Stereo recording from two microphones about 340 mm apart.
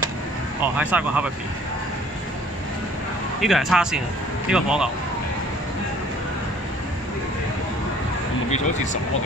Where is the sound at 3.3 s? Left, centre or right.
Centre.